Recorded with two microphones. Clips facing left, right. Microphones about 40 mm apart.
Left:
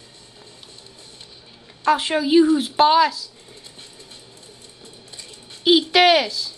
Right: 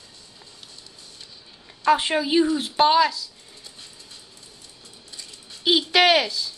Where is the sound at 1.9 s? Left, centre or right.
Centre.